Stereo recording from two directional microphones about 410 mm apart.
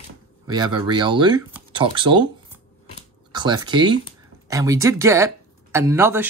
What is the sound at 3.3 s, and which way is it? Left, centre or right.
Speech, centre.